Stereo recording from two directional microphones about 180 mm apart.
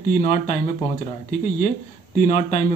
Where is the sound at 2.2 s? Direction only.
40° left (ahead or behind).